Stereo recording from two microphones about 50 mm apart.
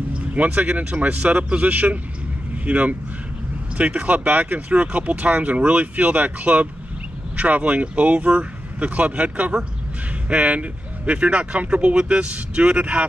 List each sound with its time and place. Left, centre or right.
0.3 s speech: right